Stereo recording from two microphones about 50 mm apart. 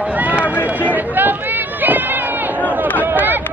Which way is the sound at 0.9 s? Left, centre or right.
Right.